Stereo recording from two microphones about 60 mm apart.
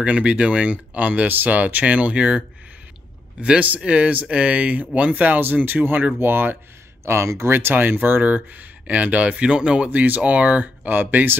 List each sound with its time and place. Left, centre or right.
0.0 s speech: right
7.1 s speech: right
7.5 s speech: right; by 9.8 s centre
9.8 s speech: right